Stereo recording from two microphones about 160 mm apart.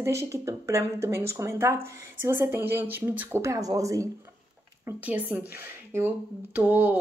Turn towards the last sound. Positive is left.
turn(degrees=-10)  # may be behind; listen again after turning